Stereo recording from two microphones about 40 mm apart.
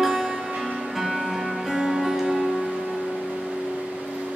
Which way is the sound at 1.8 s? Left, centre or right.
Centre.